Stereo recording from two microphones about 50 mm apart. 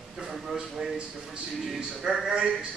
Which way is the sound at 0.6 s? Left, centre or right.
Centre.